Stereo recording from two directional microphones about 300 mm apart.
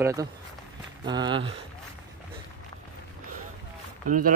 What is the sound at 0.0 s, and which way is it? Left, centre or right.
Speech, centre.